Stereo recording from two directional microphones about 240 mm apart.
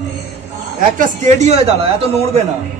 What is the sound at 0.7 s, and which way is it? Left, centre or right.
A man's voice, right.